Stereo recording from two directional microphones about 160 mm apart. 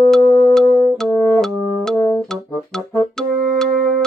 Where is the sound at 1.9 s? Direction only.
20° left (ahead or behind).